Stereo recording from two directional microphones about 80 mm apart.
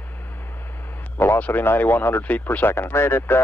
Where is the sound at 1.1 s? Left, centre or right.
Left.